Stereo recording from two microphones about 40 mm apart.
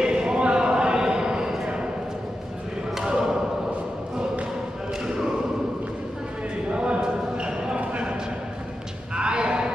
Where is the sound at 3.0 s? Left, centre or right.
Centre.